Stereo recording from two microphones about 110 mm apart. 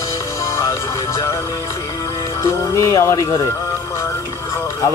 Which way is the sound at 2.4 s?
25° left (ahead or behind).